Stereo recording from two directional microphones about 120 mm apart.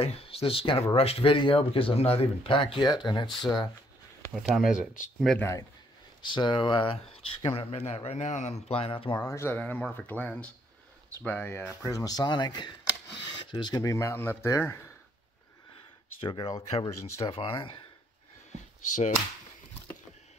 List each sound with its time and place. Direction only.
0.0 s speech: 55° left (ahead or behind); by 3.7 s 35° left (ahead or behind)
4.3 s speech: centre (ahead or behind)
5.4 s speech: 25° left (ahead or behind)
6.2 s speech: 40° left (ahead or behind)
9.1 s speech: 25° left (ahead or behind)
9.6 s speech: 10° left (ahead or behind)
16.2 s speech: 45° left (ahead or behind)
16.8 s speech: 25° left (ahead or behind)
17.3 s speech: 50° left (ahead or behind)